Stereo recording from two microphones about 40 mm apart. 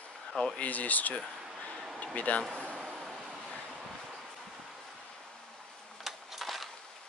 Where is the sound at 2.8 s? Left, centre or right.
Centre.